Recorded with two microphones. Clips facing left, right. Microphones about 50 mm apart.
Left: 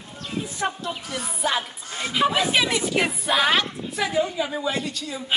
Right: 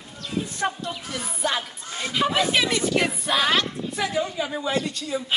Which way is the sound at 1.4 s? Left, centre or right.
Centre.